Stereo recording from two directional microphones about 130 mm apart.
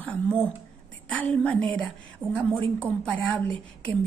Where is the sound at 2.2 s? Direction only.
20° right (ahead or behind).